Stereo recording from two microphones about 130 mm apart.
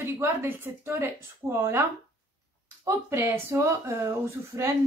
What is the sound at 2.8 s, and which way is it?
Speech, 20° right (ahead or behind).